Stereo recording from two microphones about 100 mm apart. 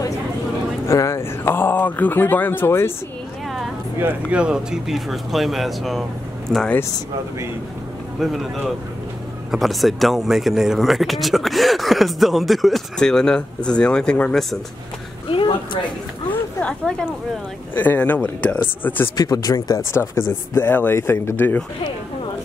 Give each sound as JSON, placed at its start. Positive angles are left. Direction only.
{"t": 0.8, "sound": "speech", "side_deg": 30}
{"t": 4.0, "sound": "speech", "side_deg": -10}
{"t": 8.2, "sound": "speech", "side_deg": 0}
{"t": 15.2, "sound": "a sound", "side_deg": 55}
{"t": 16.5, "sound": "speech", "side_deg": 10}
{"t": 19.1, "sound": "speech", "side_deg": 40}